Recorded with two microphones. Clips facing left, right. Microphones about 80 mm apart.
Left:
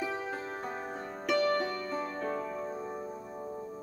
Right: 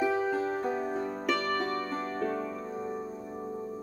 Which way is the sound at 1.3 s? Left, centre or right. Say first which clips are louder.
Left 3 dB; right.